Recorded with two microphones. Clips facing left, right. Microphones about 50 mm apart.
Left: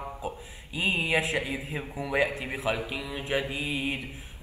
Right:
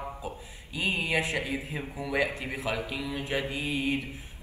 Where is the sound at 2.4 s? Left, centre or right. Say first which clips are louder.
Left 1 dB; left.